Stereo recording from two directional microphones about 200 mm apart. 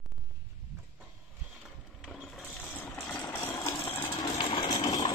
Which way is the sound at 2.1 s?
Centre (ahead or behind).